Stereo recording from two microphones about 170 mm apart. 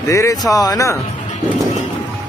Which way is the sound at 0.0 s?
20° left (ahead or behind).